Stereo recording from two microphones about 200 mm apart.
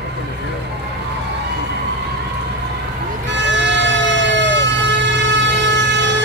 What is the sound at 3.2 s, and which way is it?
Emergency vehicle, 60° right (ahead or behind).